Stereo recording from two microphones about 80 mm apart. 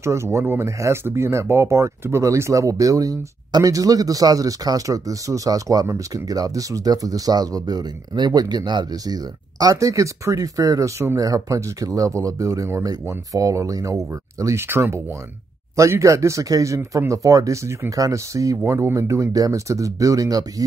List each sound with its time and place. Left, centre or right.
0.0 s speech: right